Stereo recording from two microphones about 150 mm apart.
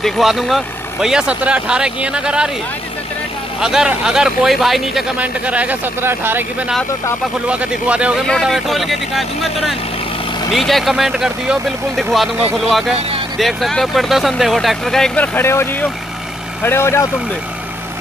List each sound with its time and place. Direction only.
0.0 s speech: centre (ahead or behind)
3.6 s speech: 5° right (ahead or behind)
7.4 s speech: 10° right (ahead or behind)
8.3 s speech: centre (ahead or behind)